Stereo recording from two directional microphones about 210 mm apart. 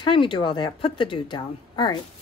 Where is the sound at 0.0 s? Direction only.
25° left (ahead or behind).